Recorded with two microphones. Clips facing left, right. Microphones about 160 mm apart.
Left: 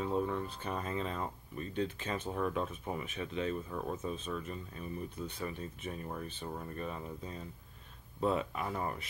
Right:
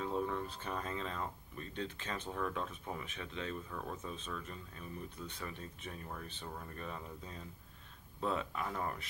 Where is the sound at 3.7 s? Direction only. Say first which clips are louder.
Left 6 dB; 20° left (ahead or behind).